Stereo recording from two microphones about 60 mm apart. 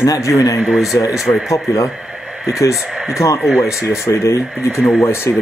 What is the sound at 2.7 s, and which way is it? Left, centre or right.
Speech, centre.